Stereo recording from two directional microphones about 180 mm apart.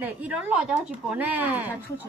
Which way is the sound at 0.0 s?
10° right (ahead or behind).